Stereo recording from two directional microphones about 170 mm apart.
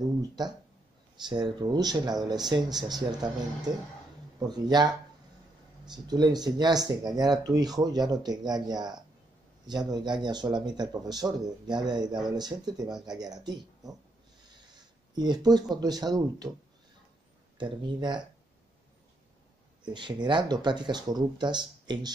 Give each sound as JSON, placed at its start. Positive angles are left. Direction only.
{"t": 1.3, "sound": "speech", "side_deg": -25}
{"t": 15.1, "sound": "speech", "side_deg": -25}
{"t": 17.6, "sound": "speech", "side_deg": -25}
{"t": 19.8, "sound": "speech", "side_deg": -25}